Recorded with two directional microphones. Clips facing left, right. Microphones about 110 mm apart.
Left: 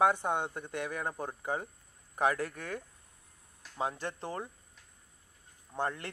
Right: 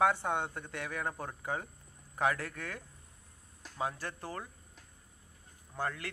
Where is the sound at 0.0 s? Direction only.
15° left (ahead or behind).